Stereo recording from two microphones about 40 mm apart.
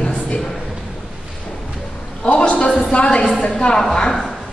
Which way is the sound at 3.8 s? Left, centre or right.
Centre.